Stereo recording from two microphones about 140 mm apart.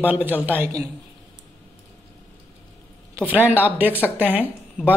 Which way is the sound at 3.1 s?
10° right (ahead or behind).